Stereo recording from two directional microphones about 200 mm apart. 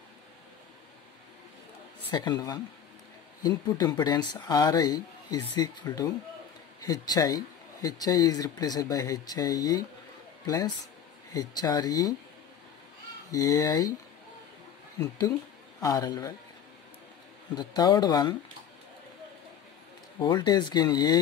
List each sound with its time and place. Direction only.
2.1 s speech: 20° left (ahead or behind)
13.3 s speech: 15° left (ahead or behind)
15.0 s speech: 20° left (ahead or behind)
17.6 s speech: 20° left (ahead or behind)
20.2 s speech: 20° left (ahead or behind)